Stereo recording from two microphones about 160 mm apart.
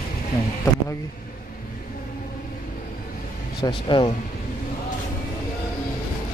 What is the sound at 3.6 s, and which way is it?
Speech, 30° left (ahead or behind).